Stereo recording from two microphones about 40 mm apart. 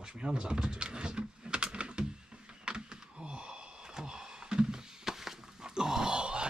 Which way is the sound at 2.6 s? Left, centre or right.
Right.